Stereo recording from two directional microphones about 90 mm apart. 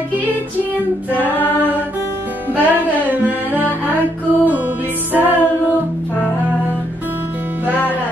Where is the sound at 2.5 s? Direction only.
20° right (ahead or behind).